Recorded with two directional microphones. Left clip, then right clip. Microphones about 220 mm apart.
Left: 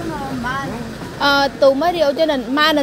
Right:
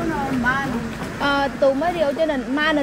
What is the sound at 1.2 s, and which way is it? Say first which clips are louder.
Speech: left 5 dB; 20° left (ahead or behind).